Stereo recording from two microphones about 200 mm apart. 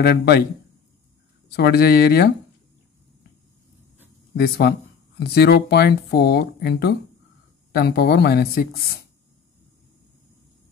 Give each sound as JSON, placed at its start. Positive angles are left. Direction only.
{"t": 0.0, "sound": "speech", "side_deg": 55}
{"t": 1.5, "sound": "speech", "side_deg": 55}
{"t": 4.4, "sound": "speech", "side_deg": 55}